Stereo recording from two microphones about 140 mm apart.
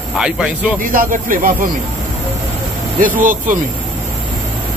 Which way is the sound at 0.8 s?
80° right.